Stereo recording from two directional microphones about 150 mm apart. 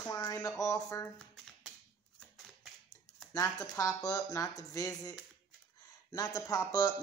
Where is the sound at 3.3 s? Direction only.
25° left (ahead or behind).